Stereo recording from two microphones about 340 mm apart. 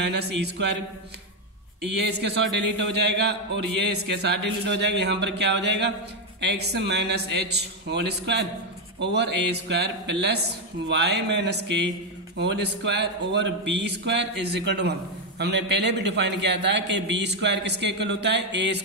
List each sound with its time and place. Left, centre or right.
0.0 s a man's voice: right
1.8 s a man's voice: right